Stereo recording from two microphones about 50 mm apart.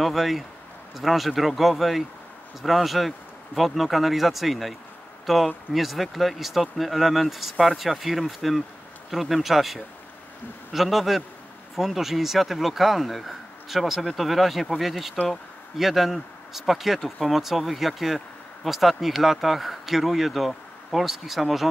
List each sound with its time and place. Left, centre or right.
0.0 s speech: centre